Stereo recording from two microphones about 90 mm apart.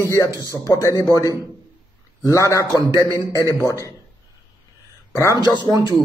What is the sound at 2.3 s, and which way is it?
A man's voice, 35° left (ahead or behind).